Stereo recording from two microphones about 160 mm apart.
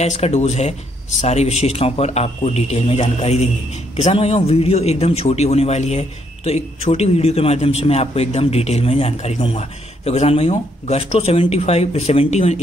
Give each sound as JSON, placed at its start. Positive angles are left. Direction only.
{"t": 0.0, "sound": "a man's voice", "side_deg": 45}